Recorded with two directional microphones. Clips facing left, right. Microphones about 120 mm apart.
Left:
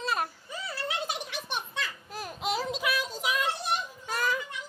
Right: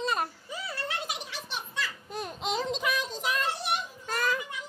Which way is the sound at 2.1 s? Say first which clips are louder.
Even; 5° left (ahead or behind).